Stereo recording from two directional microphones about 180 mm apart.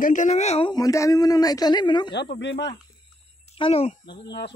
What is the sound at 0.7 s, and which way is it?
Speech, 20° left (ahead or behind).